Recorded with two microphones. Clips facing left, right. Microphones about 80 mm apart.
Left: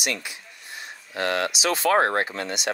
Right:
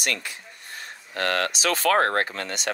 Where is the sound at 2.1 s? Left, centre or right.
Right.